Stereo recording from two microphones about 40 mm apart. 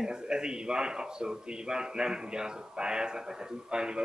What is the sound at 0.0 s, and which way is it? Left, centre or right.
A man's voice, centre.